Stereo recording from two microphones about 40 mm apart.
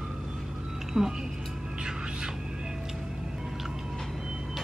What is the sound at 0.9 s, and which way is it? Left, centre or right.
Music, centre.